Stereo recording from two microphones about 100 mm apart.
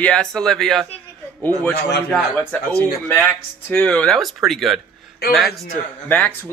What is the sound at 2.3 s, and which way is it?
Speech, 15° left (ahead or behind).